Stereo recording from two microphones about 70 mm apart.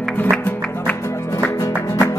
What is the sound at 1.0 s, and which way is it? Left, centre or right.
Music, left.